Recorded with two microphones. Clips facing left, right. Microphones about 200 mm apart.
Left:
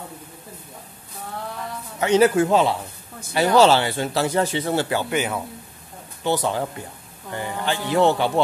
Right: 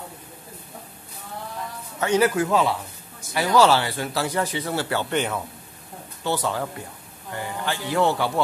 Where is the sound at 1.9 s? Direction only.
20° left (ahead or behind).